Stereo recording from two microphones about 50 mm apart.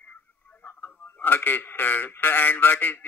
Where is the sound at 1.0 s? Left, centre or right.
Left.